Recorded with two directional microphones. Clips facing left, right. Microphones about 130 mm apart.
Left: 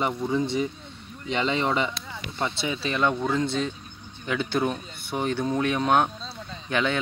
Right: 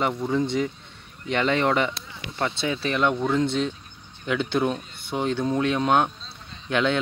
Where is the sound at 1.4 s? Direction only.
15° left (ahead or behind).